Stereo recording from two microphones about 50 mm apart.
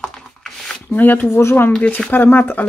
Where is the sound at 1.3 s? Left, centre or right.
Left.